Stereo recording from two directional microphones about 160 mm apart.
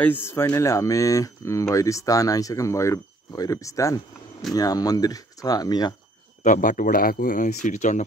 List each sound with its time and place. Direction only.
0.0 s speech: 15° left (ahead or behind)
6.4 s speech: 55° left (ahead or behind)